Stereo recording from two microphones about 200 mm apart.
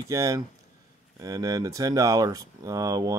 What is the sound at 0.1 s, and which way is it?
Speech, 15° right (ahead or behind).